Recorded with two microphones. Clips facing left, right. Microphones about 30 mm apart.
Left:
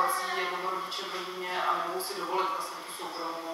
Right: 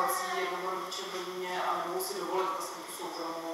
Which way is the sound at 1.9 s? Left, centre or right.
Left.